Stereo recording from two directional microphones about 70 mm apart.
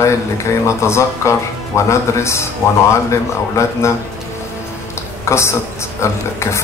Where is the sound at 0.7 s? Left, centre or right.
Left.